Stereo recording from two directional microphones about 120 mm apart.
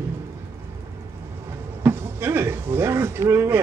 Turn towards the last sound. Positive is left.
turn(degrees=-20)  # may be behind; listen again after turning